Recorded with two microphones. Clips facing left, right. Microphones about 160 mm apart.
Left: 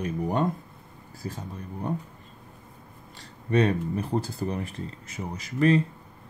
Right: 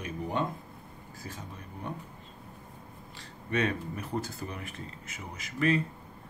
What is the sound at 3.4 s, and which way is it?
Speech, 35° left (ahead or behind).